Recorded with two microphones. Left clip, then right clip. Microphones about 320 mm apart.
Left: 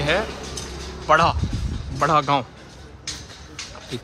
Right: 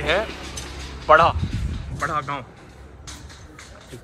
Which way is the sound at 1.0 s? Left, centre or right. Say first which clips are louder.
Right 2 dB; centre.